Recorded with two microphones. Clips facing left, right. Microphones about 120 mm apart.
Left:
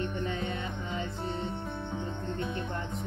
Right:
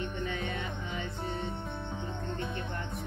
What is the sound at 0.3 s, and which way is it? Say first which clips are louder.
Music: left 2 dB; 25° left (ahead or behind).